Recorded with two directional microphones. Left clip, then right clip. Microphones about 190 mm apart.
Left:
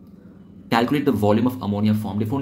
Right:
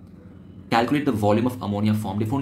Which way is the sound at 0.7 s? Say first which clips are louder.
Left 1 dB; 10° left (ahead or behind).